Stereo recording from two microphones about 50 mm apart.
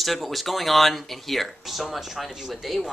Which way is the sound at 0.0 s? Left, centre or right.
Centre.